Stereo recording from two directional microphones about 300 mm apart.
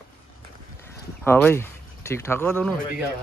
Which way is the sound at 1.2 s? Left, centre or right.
Centre.